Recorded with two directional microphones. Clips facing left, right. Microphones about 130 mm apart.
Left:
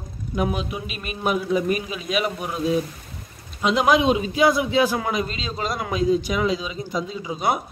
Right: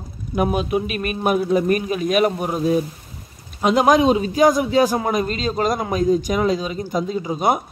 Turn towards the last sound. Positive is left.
turn(degrees=-45)  # may be behind; listen again after turning